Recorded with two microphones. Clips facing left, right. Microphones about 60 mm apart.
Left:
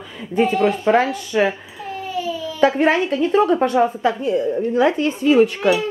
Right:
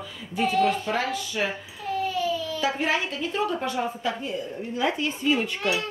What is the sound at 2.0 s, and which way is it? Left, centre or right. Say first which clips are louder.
Baby cry: left 3 dB; centre.